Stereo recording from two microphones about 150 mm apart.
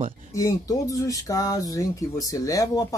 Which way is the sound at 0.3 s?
20° left (ahead or behind).